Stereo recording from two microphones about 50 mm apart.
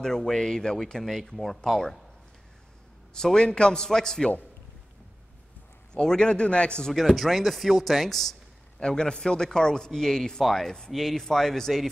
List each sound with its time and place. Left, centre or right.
0.0 s a man's voice: centre
1.0 s speech: centre
3.2 s a man's voice: centre
5.9 s a man's voice: centre
6.9 s a man's voice: centre